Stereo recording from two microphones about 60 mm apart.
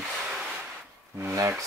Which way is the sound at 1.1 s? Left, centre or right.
Right.